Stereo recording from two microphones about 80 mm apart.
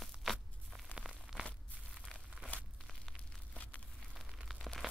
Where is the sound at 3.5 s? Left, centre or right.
Centre.